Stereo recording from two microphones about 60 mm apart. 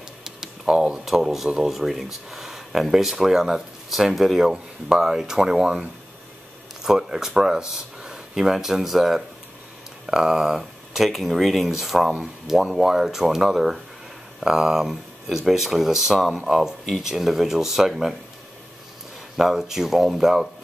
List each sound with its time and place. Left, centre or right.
0.2 s computer keyboard: centre
1.0 s speech: centre
19.3 s speech: centre